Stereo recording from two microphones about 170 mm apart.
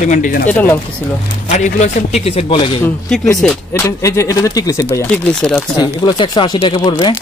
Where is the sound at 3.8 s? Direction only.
15° left (ahead or behind).